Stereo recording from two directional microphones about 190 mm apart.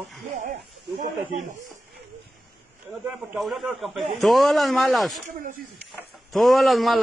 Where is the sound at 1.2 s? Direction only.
35° right (ahead or behind).